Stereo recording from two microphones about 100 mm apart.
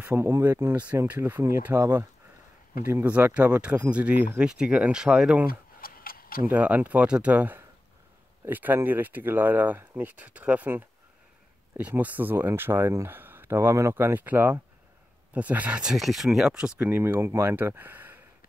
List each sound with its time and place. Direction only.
0.0 s speech: 25° right (ahead or behind); by 5.4 s 10° right (ahead or behind)
6.5 s speech: 15° right (ahead or behind)